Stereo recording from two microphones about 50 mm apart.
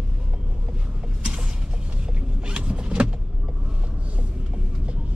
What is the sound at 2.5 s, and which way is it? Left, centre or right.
Vehicle, right.